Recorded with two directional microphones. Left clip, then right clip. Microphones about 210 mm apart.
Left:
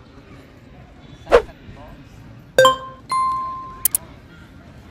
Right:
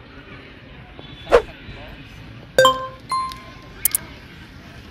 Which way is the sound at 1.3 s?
Centre (ahead or behind).